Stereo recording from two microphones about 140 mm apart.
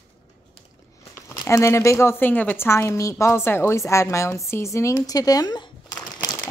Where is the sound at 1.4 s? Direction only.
20° left (ahead or behind).